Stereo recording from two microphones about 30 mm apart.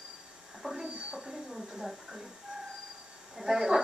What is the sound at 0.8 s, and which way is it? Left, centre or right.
Speech, right.